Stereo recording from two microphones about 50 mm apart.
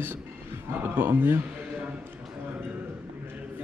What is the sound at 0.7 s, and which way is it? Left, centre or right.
Speech, right.